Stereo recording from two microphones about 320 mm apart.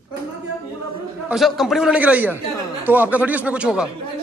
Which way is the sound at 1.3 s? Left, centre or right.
Centre.